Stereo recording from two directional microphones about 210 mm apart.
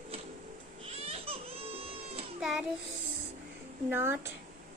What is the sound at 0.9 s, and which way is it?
Baby cry, 30° right (ahead or behind).